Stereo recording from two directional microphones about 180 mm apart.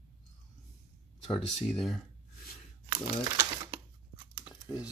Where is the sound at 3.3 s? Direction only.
20° right (ahead or behind).